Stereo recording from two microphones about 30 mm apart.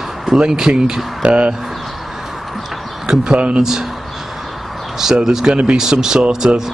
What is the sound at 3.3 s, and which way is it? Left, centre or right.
Speech, right.